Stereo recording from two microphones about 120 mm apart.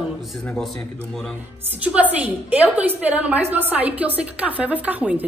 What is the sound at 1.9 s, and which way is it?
A woman's voice, 10° right (ahead or behind).